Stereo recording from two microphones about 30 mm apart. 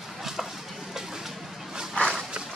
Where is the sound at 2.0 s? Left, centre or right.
Left.